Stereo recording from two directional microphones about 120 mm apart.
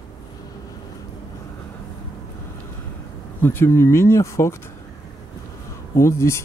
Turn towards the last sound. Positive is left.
turn(degrees=25)  # may be behind; listen again after turning